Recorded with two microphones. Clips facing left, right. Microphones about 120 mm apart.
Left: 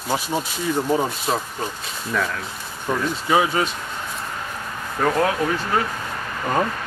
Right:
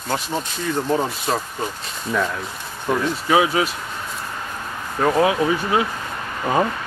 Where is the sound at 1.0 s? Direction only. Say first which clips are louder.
Even; centre (ahead or behind).